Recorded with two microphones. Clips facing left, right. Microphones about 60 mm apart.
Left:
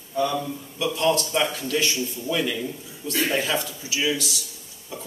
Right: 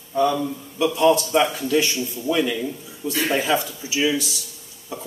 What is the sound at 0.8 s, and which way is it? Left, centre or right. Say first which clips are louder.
Speech: right 5 dB; centre.